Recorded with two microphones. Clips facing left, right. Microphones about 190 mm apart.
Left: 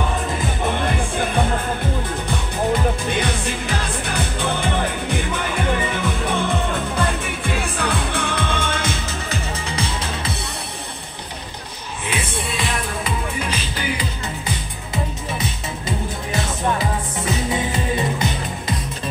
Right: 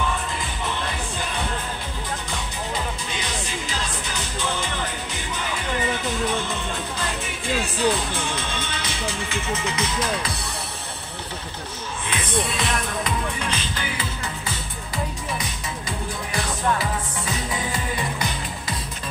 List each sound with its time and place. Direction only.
0.6 s music: 55° left (ahead or behind)
2.7 s music: 55° left (ahead or behind); by 10.3 s 30° left (ahead or behind)
12.1 s music: 5° left (ahead or behind)
16.6 s music: 20° left (ahead or behind)